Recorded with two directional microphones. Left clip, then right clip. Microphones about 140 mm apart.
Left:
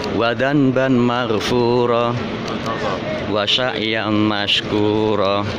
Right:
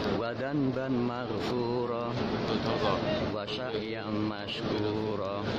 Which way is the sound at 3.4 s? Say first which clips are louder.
Left 18 dB; 45° left (ahead or behind).